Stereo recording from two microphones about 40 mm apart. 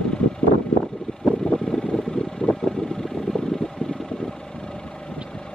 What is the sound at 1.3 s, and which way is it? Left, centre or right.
Vehicle, centre.